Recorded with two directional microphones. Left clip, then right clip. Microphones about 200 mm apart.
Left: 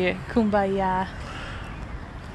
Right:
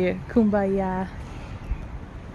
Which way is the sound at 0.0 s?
40° right (ahead or behind).